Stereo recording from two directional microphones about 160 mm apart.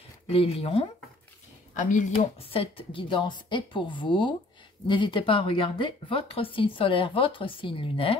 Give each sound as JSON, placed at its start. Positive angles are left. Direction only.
{"t": 0.3, "sound": "speech", "side_deg": 35}
{"t": 1.8, "sound": "speech", "side_deg": 50}
{"t": 2.5, "sound": "speech", "side_deg": 35}